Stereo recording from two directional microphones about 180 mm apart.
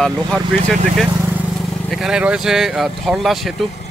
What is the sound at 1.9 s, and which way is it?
A man's voice, 5° right (ahead or behind).